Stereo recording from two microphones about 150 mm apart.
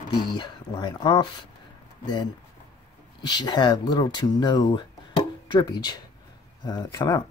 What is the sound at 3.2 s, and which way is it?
Speech, 30° left (ahead or behind).